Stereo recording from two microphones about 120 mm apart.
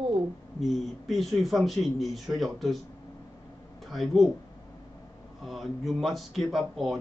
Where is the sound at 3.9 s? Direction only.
Centre (ahead or behind).